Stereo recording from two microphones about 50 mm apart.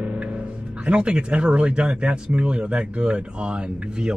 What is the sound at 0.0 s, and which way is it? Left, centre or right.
Speech, right.